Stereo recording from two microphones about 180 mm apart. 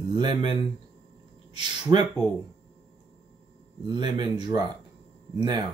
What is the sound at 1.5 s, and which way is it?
Speech, 25° right (ahead or behind).